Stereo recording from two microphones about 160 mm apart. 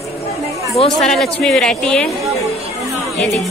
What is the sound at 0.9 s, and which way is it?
Speech, centre (ahead or behind).